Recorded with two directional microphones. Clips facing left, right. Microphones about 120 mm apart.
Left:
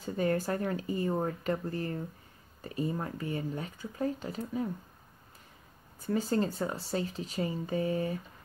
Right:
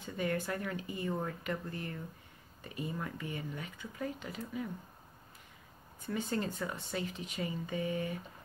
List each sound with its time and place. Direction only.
0.0 s speech: 40° left (ahead or behind)
5.9 s speech: 35° left (ahead or behind)